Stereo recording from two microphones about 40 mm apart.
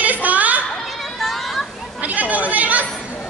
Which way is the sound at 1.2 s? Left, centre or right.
Centre.